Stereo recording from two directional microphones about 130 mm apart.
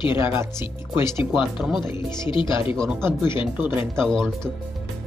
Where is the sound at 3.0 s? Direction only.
20° right (ahead or behind).